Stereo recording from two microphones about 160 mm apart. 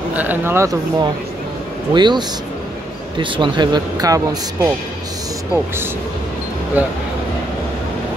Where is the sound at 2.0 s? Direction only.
25° right (ahead or behind).